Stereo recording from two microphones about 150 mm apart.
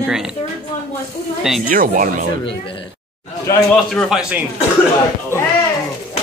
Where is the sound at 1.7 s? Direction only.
65° right (ahead or behind).